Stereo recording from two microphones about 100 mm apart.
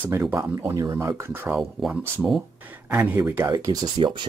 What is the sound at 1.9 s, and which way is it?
Speech, 15° right (ahead or behind).